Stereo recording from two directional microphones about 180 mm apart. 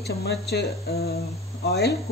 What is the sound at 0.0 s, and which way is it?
Speech, 65° left (ahead or behind).